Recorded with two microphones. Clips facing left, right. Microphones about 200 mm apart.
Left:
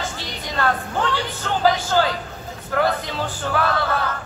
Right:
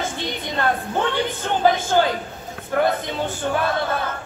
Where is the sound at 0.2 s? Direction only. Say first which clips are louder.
Left 1 dB; 20° right (ahead or behind).